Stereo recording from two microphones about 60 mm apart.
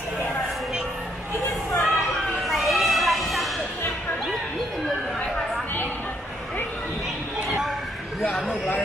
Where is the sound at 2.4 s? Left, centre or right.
Centre.